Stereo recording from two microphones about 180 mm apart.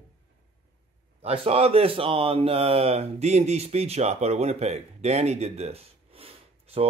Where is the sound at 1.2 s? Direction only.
30° right (ahead or behind).